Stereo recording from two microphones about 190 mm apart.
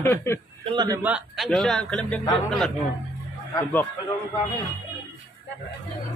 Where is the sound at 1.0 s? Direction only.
5° right (ahead or behind).